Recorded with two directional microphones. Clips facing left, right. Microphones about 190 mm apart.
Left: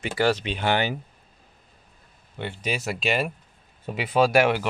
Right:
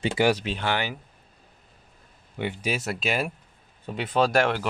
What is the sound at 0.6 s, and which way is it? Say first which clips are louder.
Speech: left 4 dB; 20° left (ahead or behind).